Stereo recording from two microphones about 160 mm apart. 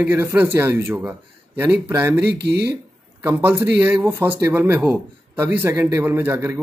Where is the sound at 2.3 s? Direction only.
90° right.